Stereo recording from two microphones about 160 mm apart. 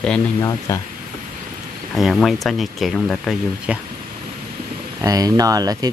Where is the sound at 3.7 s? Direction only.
5° right (ahead or behind).